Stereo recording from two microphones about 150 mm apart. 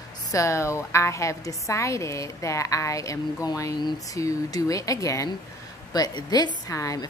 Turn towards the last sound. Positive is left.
turn(degrees=20)  # may be behind; listen again after turning